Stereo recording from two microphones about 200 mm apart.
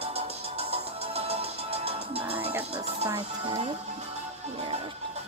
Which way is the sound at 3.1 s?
25° right (ahead or behind).